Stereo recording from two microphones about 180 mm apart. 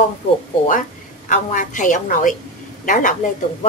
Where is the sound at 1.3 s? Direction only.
45° left (ahead or behind).